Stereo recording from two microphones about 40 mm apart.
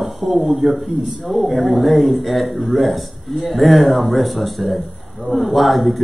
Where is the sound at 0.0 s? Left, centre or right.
Centre.